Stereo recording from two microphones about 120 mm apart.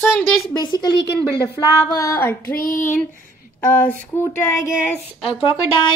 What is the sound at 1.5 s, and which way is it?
Female singing, 30° left (ahead or behind).